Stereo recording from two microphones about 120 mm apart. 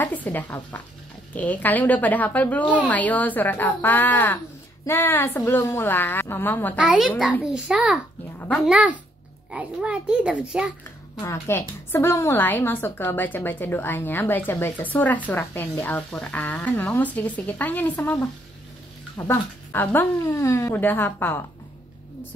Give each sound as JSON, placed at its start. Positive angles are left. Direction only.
{"t": 0.0, "sound": "a woman's voice", "side_deg": 15}
{"t": 6.8, "sound": "a child's voice", "side_deg": -5}
{"t": 11.1, "sound": "a woman's voice", "side_deg": 20}